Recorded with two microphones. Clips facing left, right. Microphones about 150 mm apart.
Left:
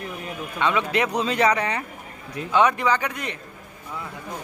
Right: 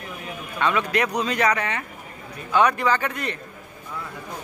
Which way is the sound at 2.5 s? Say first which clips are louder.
Even; 20° left (ahead or behind).